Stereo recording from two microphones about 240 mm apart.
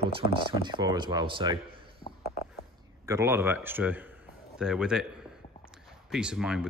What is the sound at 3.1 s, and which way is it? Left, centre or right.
A man's voice, centre.